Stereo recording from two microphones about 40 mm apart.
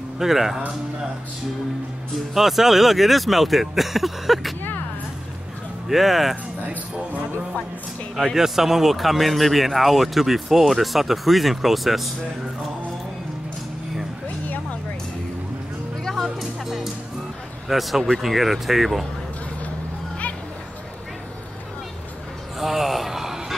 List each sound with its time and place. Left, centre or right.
0.2 s speech: centre
2.3 s speech: centre
5.9 s speech: centre
8.4 s speech: centre
14.4 s a sound: left
16.0 s music: centre
16.3 s music: centre
17.6 s speech: centre
22.6 s a sound: centre